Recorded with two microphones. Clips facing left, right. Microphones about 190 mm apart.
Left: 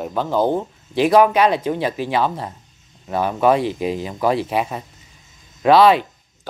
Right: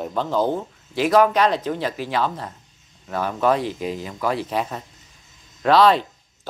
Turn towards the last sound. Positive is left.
turn(degrees=10)  # may be behind; listen again after turning